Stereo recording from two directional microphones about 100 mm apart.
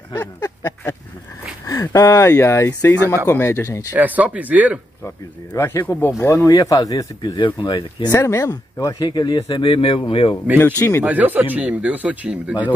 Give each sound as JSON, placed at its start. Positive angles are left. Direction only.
{"t": 0.2, "sound": "a sound", "side_deg": 30}
{"t": 1.7, "sound": "speech", "side_deg": 35}
{"t": 3.9, "sound": "speech", "side_deg": -15}
{"t": 5.0, "sound": "speech", "side_deg": 25}
{"t": 7.3, "sound": "speech", "side_deg": 55}
{"t": 8.1, "sound": "speech", "side_deg": 30}
{"t": 10.6, "sound": "speech", "side_deg": 25}
{"t": 11.1, "sound": "speech", "side_deg": -15}